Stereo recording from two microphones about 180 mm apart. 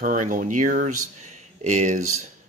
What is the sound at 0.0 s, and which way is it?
Speech, 50° right (ahead or behind).